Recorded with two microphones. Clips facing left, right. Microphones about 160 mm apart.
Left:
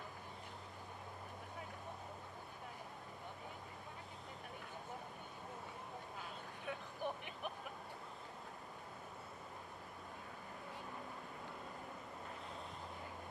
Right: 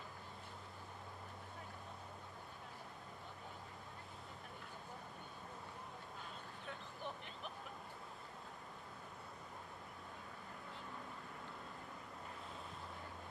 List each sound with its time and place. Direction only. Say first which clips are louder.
7.0 s vehicle: left 6 dB; 55° left (ahead or behind)